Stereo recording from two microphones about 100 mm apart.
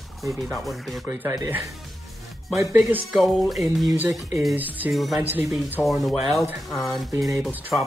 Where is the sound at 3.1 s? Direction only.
Centre (ahead or behind).